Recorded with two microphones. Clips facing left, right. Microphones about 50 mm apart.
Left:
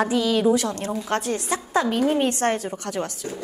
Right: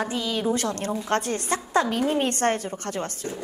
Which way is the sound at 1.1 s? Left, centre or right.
Right.